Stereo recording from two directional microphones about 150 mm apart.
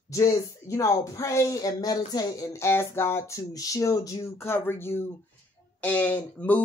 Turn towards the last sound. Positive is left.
turn(degrees=10)  # may be behind; listen again after turning